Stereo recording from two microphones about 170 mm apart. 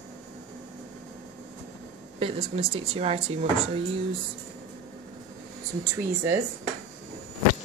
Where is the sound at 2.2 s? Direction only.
30° right (ahead or behind).